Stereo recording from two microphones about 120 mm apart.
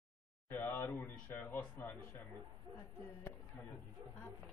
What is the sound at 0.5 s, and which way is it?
Speech, 15° left (ahead or behind).